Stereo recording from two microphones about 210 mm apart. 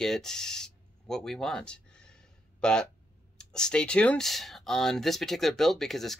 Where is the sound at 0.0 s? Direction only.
Centre (ahead or behind).